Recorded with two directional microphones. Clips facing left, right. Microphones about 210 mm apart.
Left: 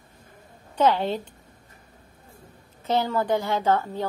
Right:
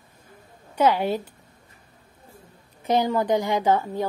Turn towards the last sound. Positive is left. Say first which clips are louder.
# right 2 dB
turn(degrees=-15)  # may be behind; listen again after turning